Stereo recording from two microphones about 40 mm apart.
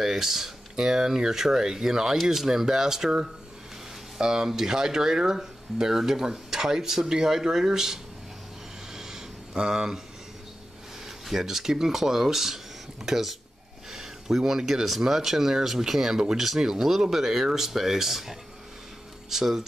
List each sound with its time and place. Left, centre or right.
0.0 s speech: centre
8.9 s a sound: centre
9.5 s speech: centre
11.1 s speech: centre